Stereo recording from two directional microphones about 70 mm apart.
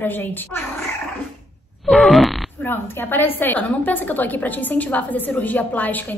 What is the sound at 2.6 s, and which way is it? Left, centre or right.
A woman's voice, left.